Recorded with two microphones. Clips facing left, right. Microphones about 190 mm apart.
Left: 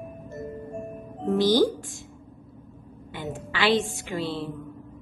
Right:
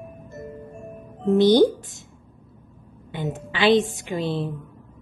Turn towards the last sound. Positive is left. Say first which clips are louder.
# right 4 dB
turn(degrees=-20)  # may be behind; listen again after turning